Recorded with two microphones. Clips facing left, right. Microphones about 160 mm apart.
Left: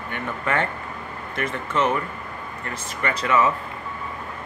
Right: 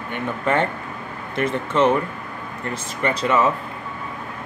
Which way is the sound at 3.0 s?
25° right (ahead or behind).